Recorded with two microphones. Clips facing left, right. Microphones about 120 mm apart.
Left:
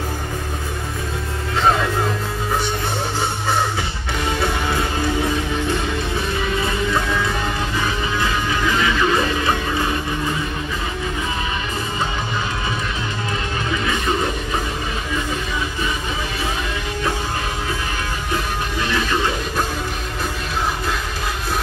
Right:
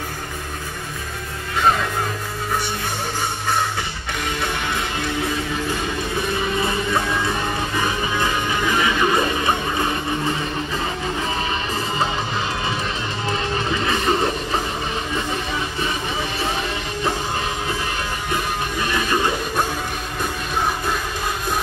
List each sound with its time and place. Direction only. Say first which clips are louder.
8.7 s music: even; 20° right (ahead or behind)